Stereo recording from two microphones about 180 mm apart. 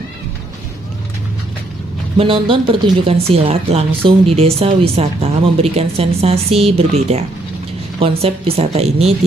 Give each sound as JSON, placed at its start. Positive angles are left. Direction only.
{"t": 2.1, "sound": "speech", "side_deg": -30}